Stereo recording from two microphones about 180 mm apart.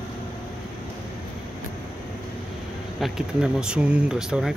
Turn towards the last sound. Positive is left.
turn(degrees=0)  # may be behind; listen again after turning